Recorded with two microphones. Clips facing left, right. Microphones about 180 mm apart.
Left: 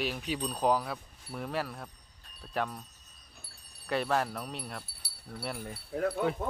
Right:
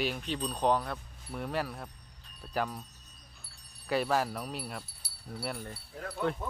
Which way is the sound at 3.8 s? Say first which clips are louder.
Right 1 dB; centre (ahead or behind).